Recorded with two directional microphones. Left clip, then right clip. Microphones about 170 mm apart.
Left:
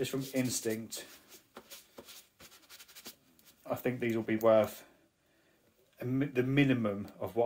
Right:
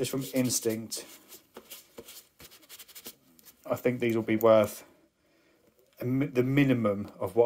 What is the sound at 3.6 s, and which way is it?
Speech, 30° right (ahead or behind).